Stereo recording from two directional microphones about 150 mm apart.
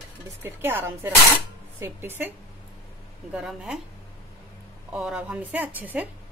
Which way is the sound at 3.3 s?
5° right (ahead or behind).